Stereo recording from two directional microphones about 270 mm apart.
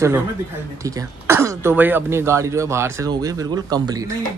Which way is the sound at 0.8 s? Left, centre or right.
Centre.